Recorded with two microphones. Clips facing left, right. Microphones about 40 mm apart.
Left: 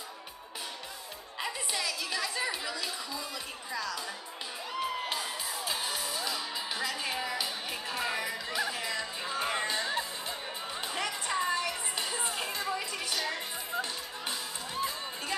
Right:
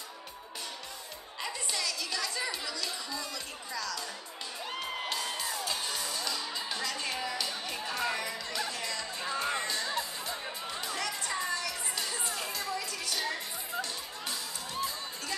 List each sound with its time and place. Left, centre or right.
1.4 s speech: centre
5.1 s music: centre